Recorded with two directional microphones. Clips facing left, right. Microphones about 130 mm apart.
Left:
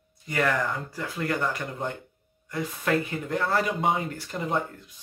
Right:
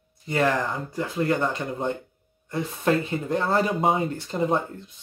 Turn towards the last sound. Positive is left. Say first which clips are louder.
# right 4 dB
turn(degrees=-25)  # may be behind; listen again after turning